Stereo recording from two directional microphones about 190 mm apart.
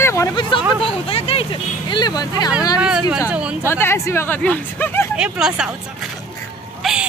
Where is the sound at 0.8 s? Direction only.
30° left (ahead or behind).